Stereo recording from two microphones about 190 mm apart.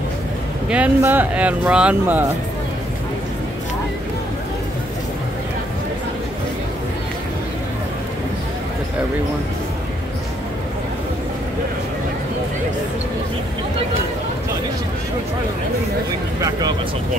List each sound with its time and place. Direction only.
0.7 s speech: 10° right (ahead or behind)
16.3 s speech: 15° right (ahead or behind)